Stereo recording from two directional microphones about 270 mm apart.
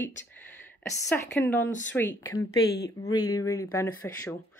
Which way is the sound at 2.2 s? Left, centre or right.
Left.